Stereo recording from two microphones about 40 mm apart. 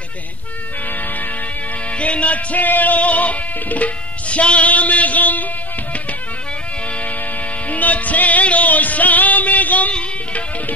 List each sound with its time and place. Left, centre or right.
2.0 s music: left
7.7 s music: left